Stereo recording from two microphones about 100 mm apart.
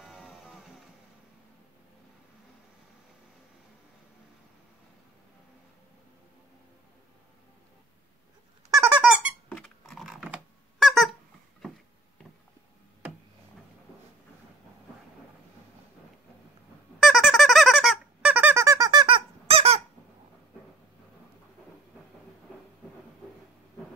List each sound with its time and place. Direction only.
0.0 s music: 5° right (ahead or behind)
8.6 s squeak: 30° right (ahead or behind)
9.0 s squeak: 10° right (ahead or behind)
9.5 s squeak: 5° left (ahead or behind)
10.0 s squeak: 5° right (ahead or behind)
17.0 s squeak: centre (ahead or behind)
18.2 s squeak: 20° right (ahead or behind)
18.9 s squeak: 50° right (ahead or behind); by 19.8 s 85° right